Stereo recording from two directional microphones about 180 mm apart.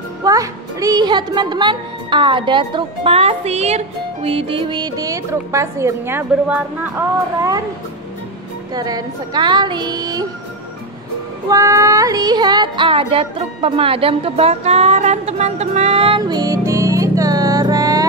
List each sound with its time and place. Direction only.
0.2 s a child's voice: 20° right (ahead or behind)
8.7 s a child's voice: 20° right (ahead or behind)
11.4 s a child's voice: 20° right (ahead or behind)